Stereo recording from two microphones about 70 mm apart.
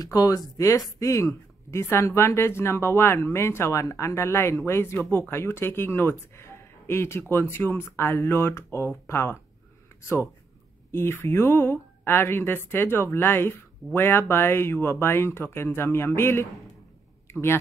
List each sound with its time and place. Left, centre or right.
0.0 s speech: left
10.9 s speech: left